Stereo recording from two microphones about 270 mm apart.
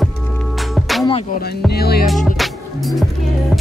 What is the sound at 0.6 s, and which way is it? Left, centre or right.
Music, centre.